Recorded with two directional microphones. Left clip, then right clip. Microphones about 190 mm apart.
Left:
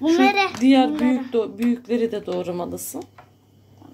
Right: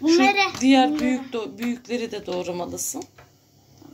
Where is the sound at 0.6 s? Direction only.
20° left (ahead or behind).